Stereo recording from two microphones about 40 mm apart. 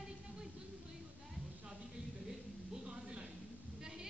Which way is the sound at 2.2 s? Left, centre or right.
Centre.